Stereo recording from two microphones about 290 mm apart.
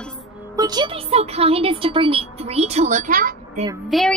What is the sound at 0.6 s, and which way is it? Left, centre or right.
Speech, centre.